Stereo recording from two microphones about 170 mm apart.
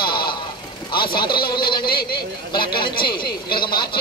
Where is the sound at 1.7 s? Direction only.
65° left (ahead or behind).